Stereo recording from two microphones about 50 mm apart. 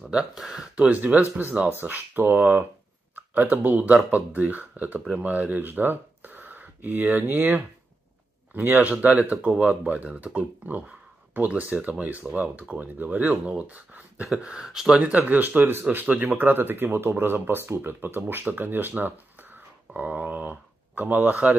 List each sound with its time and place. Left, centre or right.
0.4 s speech: centre
0.8 s speech: right
13.5 s speech: right
14.5 s speech: centre
15.2 s speech: right
20.0 s a sound: right
21.0 s speech: right